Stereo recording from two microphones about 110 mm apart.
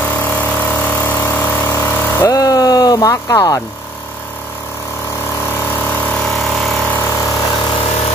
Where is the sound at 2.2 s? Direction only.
35° left (ahead or behind).